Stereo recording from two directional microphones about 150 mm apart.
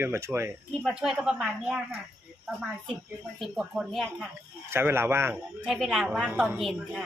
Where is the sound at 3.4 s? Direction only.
Centre (ahead or behind).